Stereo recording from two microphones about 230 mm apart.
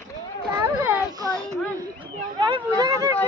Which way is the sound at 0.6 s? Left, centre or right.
Centre.